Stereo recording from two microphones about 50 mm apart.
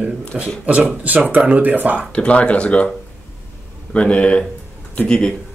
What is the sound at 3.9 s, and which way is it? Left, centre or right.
Speech, left.